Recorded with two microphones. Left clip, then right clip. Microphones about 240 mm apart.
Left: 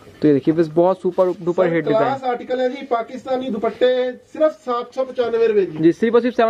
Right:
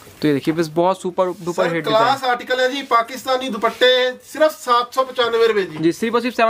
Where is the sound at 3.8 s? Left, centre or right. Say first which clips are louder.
Right 3 dB; right.